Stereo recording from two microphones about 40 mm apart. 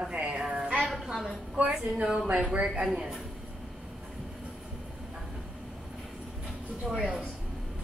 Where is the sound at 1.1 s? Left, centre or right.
Centre.